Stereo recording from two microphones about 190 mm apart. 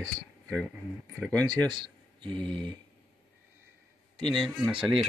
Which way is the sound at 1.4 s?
25° right (ahead or behind).